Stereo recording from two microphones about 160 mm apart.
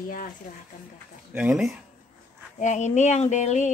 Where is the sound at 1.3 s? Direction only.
5° right (ahead or behind).